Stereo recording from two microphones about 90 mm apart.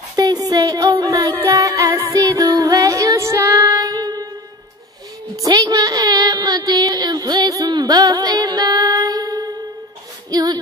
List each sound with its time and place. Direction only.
0.1 s music: 45° right (ahead or behind)
2.0 s child singing: 40° right (ahead or behind)
5.4 s a sound: 45° right (ahead or behind)
10.3 s music: 45° right (ahead or behind)